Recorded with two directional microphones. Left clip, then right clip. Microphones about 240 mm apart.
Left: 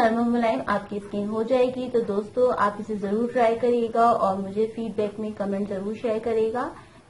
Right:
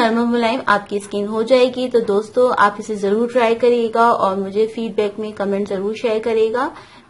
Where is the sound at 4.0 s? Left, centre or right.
Right.